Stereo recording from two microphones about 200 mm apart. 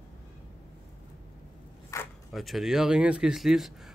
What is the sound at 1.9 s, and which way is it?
Zipper, 15° left (ahead or behind).